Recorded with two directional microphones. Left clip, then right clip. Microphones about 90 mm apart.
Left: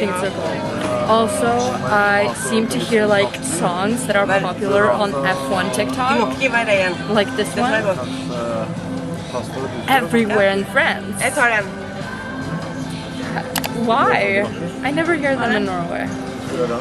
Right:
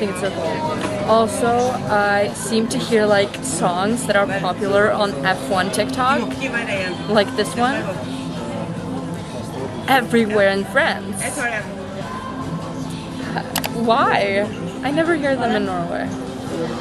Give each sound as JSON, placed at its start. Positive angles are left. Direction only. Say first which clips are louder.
{"t": 0.2, "sound": "speech", "louder": "even", "side_deg": -20}
{"t": 9.8, "sound": "speech", "louder": "even", "side_deg": -15}
{"t": 13.8, "sound": "speech", "louder": "left 1 dB", "side_deg": -15}